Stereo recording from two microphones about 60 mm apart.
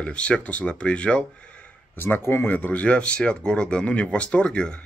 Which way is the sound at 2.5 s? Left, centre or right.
Left.